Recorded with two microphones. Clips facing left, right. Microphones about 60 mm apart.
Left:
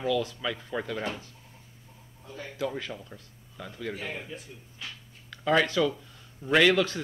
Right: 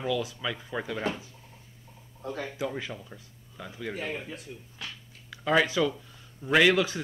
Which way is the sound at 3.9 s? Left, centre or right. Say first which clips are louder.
Right 3 dB; right.